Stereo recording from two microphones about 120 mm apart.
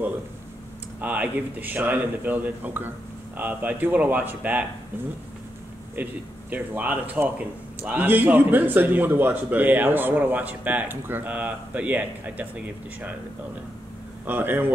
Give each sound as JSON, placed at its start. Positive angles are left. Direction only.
{"t": 1.0, "sound": "a man's voice", "side_deg": -15}
{"t": 6.0, "sound": "a man's voice", "side_deg": -15}
{"t": 14.2, "sound": "a man's voice", "side_deg": -15}